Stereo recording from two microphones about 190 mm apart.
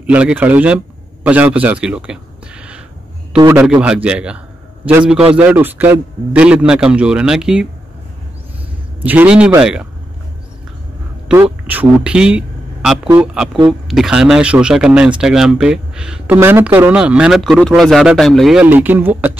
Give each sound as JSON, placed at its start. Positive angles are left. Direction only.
{"t": 0.0, "sound": "speech", "side_deg": -5}
{"t": 3.6, "sound": "speech", "side_deg": -5}
{"t": 9.0, "sound": "speech", "side_deg": -10}
{"t": 11.6, "sound": "speech", "side_deg": -10}